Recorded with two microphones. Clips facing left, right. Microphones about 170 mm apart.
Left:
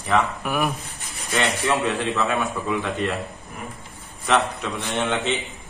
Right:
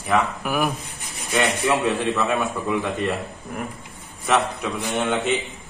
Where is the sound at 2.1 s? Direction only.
Centre (ahead or behind).